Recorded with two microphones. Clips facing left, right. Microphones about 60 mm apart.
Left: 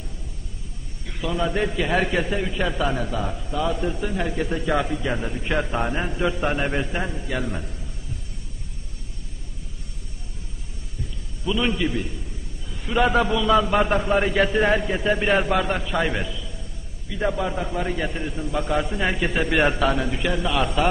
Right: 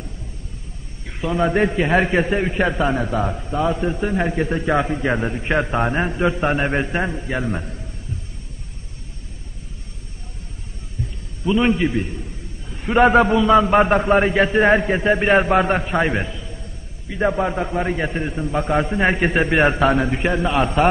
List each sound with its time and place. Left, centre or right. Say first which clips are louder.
1.0 s a man's voice: right 5 dB; right
4.0 s a man's voice: right 5 dB; right
11.4 s a man's voice: right 6 dB; right